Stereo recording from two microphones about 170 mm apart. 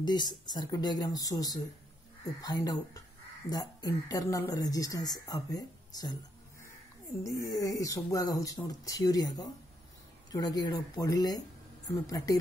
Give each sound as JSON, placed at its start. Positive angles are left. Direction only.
{"t": 0.0, "sound": "speech", "side_deg": 25}
{"t": 7.2, "sound": "speech", "side_deg": 20}